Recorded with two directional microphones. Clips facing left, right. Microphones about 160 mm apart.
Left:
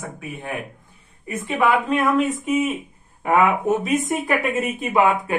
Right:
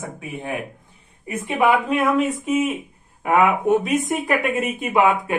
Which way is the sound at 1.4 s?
10° right (ahead or behind).